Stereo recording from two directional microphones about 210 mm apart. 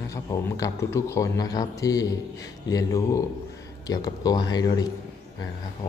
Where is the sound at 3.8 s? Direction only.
15° left (ahead or behind).